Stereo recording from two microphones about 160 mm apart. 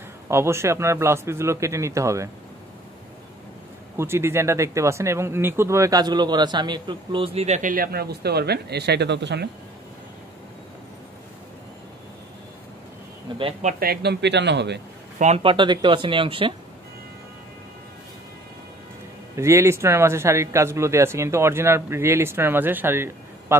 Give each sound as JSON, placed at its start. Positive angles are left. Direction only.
{"t": 0.3, "sound": "speech", "side_deg": -15}
{"t": 3.9, "sound": "speech", "side_deg": -15}
{"t": 13.4, "sound": "speech", "side_deg": -35}
{"t": 13.7, "sound": "a man's voice", "side_deg": -70}
{"t": 15.1, "sound": "speech", "side_deg": -40}
{"t": 19.3, "sound": "speech", "side_deg": -15}